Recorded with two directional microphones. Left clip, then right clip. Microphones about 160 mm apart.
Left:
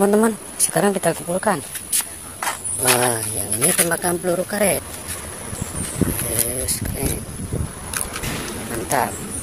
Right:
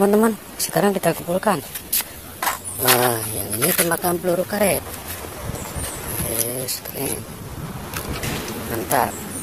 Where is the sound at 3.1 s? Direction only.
Centre (ahead or behind).